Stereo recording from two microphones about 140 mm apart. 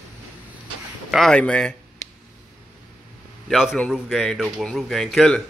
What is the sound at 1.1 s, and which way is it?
Speech, 5° left (ahead or behind).